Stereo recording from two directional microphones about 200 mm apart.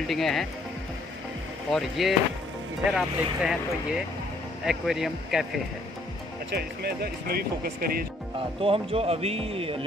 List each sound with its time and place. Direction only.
0.0 s speech: centre (ahead or behind)
1.7 s speech: centre (ahead or behind)
4.6 s speech: centre (ahead or behind)
6.5 s speech: 50° right (ahead or behind)
8.4 s speech: 30° right (ahead or behind)